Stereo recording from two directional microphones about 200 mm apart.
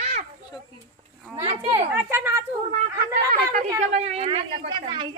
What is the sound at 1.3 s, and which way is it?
Speech, 30° right (ahead or behind).